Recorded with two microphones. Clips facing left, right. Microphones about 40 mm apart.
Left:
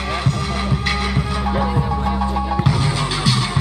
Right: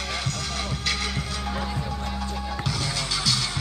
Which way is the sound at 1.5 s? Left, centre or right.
Left.